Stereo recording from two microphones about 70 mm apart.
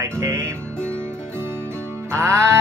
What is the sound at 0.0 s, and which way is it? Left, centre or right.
Music, right.